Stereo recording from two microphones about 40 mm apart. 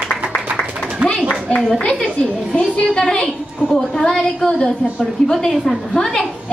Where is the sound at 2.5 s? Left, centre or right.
Left.